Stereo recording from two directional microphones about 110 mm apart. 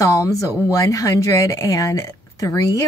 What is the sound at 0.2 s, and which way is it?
Speech, 30° left (ahead or behind).